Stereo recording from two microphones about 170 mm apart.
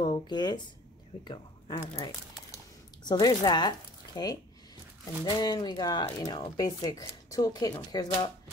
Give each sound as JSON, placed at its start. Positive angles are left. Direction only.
{"t": 0.0, "sound": "speech", "side_deg": 25}